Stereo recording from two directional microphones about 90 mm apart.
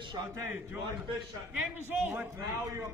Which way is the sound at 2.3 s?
35° right (ahead or behind).